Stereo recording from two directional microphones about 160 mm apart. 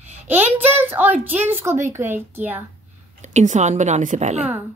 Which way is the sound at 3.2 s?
50° right (ahead or behind).